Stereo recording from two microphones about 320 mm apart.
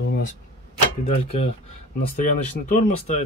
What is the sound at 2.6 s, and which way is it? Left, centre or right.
Speech, left.